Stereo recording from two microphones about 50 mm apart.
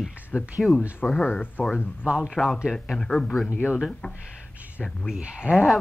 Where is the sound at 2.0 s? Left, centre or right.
Centre.